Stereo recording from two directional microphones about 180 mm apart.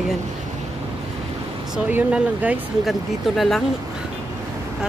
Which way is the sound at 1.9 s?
10° right (ahead or behind).